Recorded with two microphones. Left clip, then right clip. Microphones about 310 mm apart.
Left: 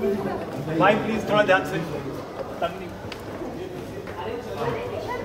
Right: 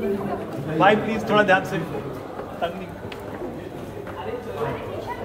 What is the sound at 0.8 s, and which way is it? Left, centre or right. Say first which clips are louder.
Speech: right 2 dB; right.